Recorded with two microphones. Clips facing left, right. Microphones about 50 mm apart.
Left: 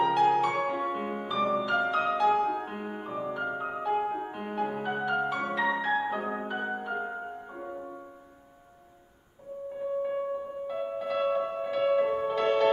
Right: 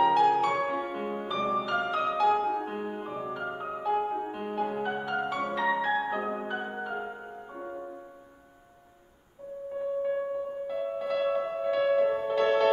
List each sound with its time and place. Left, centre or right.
0.0 s music: centre
10.7 s music: centre